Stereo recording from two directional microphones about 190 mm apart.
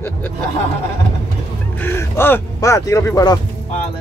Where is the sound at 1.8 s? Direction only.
10° left (ahead or behind).